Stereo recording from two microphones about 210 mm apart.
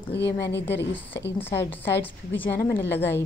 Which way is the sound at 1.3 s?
10° left (ahead or behind).